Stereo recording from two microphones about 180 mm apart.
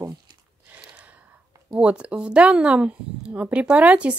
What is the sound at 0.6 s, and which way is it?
Gasp, 10° right (ahead or behind).